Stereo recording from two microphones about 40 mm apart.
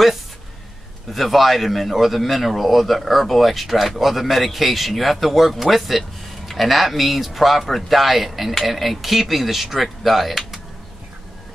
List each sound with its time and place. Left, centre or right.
1.1 s speech: centre